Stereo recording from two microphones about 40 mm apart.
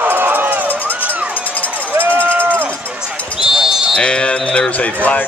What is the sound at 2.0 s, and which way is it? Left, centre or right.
Run, right.